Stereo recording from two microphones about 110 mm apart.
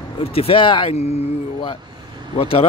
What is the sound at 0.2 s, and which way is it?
Speech, 60° left (ahead or behind).